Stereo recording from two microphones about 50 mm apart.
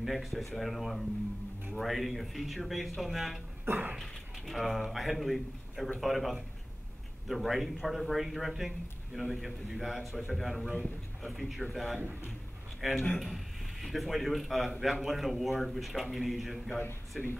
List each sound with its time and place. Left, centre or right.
0.0 s a man's voice: centre
3.6 s a sound: right
4.0 s a man's voice: centre
10.1 s a man's voice: centre
10.4 s a man's voice: centre